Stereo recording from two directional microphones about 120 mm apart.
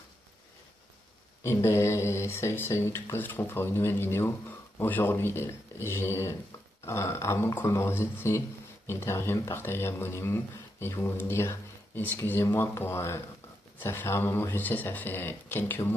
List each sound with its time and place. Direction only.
1.4 s speech: 20° left (ahead or behind)